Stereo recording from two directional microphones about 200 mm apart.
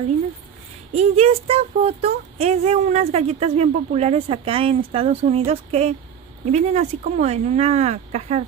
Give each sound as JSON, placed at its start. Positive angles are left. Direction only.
{"t": 0.9, "sound": "speech", "side_deg": -30}